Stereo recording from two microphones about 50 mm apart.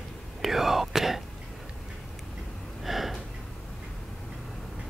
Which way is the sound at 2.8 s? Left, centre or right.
Centre.